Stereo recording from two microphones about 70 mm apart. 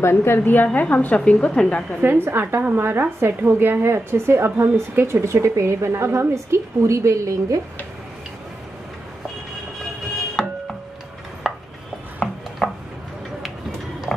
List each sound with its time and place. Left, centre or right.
0.0 s a woman's voice: left; by 2.0 s centre
2.0 s a woman's voice: right
11.4 s a sound: centre
12.2 s chopping: centre